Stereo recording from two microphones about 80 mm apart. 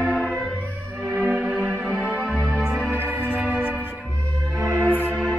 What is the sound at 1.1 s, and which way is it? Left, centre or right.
Music, centre.